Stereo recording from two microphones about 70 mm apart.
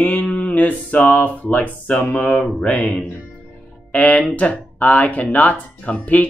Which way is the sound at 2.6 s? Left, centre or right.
Centre.